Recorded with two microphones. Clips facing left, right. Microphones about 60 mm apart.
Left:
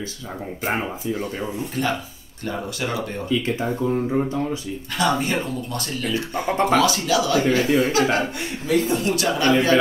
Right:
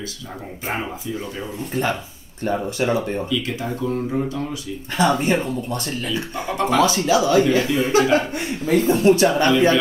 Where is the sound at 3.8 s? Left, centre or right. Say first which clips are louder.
Left 1 dB; centre.